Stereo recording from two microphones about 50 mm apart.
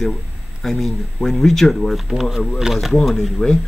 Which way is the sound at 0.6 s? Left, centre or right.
Centre.